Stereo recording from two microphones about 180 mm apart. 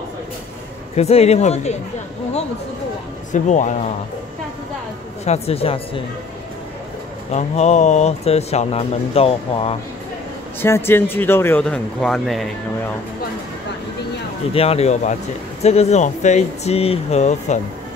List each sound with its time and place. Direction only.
0.9 s speech: 35° left (ahead or behind)
3.3 s speech: 45° left (ahead or behind)
5.2 s speech: 35° left (ahead or behind)
7.2 s speech: 40° left (ahead or behind)
10.6 s speech: 10° left (ahead or behind)
14.5 s speech: 35° left (ahead or behind)